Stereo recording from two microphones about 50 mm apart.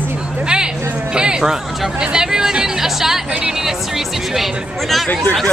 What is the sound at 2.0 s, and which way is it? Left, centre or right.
Music, centre.